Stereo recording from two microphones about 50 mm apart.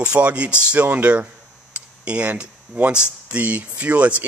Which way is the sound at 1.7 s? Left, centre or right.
Right.